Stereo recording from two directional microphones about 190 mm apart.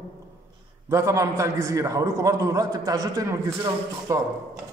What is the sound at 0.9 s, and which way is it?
A man's voice, 15° right (ahead or behind).